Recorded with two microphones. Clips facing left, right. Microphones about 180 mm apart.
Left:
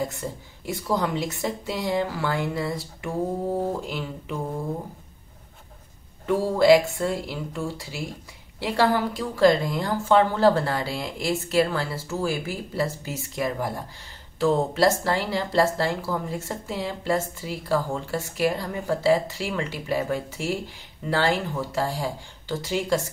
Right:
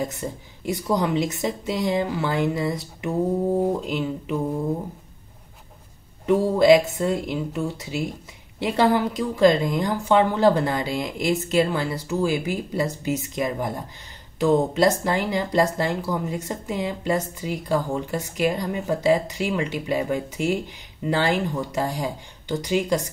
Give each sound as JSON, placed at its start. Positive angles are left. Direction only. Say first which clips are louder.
{"t": 0.0, "sound": "speech", "louder": "right 1 dB", "side_deg": -20}
{"t": 6.2, "sound": "speech", "louder": "right 2 dB", "side_deg": -20}